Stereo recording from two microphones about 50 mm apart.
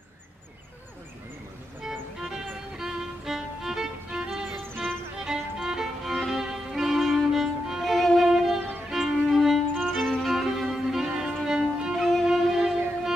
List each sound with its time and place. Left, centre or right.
1.9 s music: centre
6.4 s violin: centre
8.5 s music: right
8.9 s violin: centre
9.8 s music: centre
10.2 s music: centre
11.4 s violin: centre
12.3 s music: centre